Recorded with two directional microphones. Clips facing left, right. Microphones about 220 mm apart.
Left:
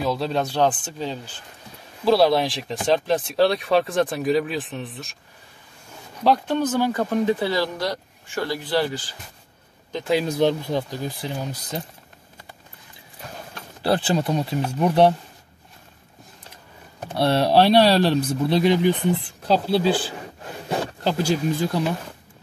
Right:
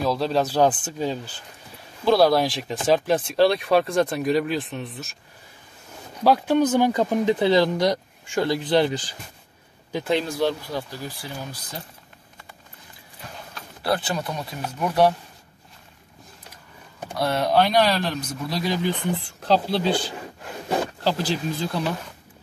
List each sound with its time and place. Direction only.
0.0 s speech: centre (ahead or behind)
6.2 s speech: 5° right (ahead or behind)
10.2 s speech: 20° left (ahead or behind)
13.8 s speech: 30° left (ahead or behind)
17.2 s speech: 30° left (ahead or behind); by 20.1 s 5° left (ahead or behind)
21.2 s speech: 15° left (ahead or behind)